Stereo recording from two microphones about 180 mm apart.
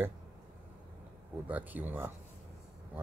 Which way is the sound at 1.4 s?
10° right (ahead or behind).